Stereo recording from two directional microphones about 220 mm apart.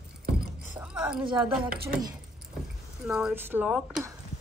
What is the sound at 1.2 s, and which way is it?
Speech, 20° right (ahead or behind).